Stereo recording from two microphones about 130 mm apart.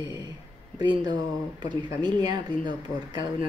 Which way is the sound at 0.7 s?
35° right (ahead or behind).